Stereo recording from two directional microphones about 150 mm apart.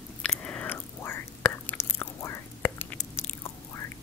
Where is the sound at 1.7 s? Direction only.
15° left (ahead or behind).